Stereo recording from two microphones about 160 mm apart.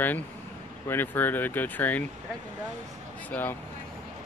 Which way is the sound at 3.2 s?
10° left (ahead or behind).